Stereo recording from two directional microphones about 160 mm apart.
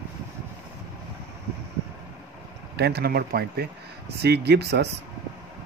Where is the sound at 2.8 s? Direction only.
90° right.